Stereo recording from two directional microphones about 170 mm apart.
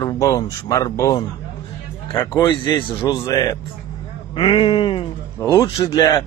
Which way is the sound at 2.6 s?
25° left (ahead or behind).